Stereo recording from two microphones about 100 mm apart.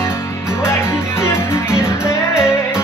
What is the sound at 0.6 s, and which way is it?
Music, 25° left (ahead or behind).